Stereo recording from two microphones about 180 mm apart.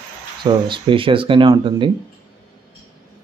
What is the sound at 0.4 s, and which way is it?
Speech, 25° right (ahead or behind).